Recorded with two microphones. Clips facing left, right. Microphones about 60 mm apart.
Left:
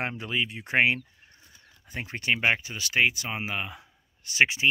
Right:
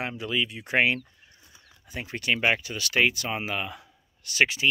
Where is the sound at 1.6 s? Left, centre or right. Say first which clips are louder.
Even; left.